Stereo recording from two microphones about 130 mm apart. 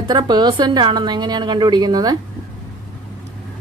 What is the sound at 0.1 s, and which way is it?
A woman's voice, 35° right (ahead or behind).